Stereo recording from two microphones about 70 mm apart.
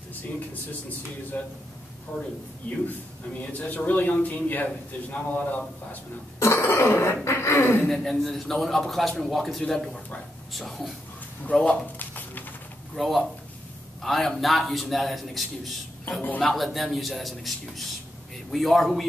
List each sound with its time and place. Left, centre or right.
1.3 s a man's voice: left
2.6 s a man's voice: left
6.4 s cough: left
7.2 s speech: left
7.9 s a man's voice: centre
11.6 s a sound: left
12.9 s a man's voice: centre